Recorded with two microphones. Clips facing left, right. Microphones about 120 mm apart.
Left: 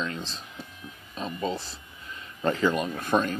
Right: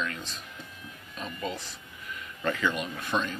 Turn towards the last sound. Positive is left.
turn(degrees=45)  # may be behind; listen again after turning